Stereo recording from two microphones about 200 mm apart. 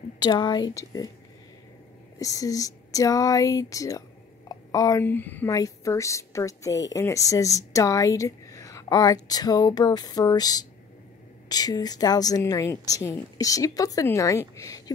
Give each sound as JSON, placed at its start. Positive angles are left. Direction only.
{"t": 0.2, "sound": "a woman's voice", "side_deg": 20}
{"t": 2.1, "sound": "a woman's voice", "side_deg": 15}